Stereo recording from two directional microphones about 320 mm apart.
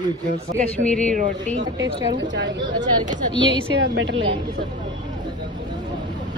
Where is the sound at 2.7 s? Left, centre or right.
Centre.